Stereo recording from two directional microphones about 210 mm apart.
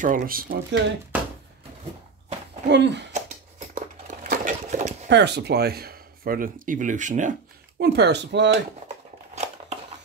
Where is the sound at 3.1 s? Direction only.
35° right (ahead or behind).